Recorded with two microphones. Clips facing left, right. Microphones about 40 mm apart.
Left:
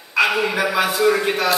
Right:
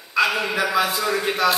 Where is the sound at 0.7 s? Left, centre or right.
Left.